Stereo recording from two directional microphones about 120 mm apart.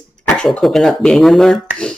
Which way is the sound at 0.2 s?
5° left (ahead or behind).